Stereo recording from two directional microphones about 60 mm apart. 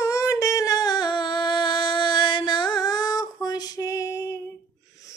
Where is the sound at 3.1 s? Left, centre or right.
Left.